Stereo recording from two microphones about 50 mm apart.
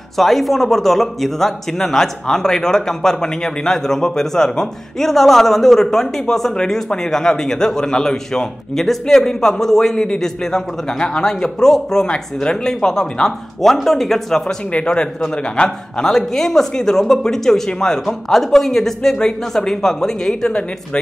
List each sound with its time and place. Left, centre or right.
0.2 s a man's voice: centre
14.7 s a man's voice: centre
16.1 s a man's voice: centre